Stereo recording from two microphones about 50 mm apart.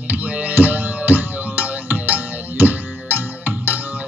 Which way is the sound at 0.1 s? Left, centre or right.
Right.